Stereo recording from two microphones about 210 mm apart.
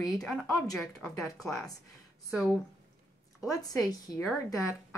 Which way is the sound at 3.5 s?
15° left (ahead or behind).